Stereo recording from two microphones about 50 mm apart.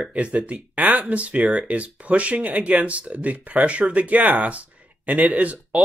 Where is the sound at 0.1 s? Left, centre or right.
Right.